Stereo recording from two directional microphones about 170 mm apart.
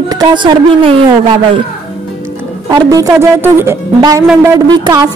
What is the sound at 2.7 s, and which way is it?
Speech, 20° right (ahead or behind).